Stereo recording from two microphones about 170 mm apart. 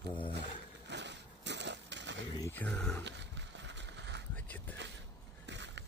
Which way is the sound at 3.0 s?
90° right.